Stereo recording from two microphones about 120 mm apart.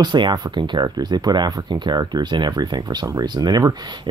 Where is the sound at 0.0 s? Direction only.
40° right (ahead or behind).